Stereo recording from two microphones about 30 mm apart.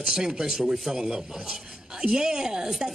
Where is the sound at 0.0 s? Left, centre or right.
Right.